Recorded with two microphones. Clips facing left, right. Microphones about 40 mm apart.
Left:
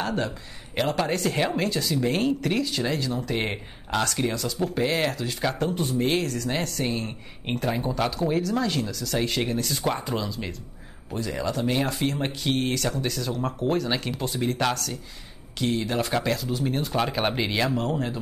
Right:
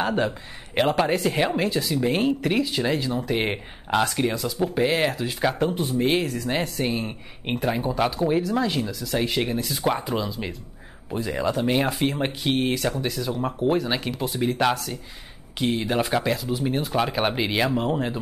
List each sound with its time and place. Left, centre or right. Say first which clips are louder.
0.0 s speech: right 4 dB; right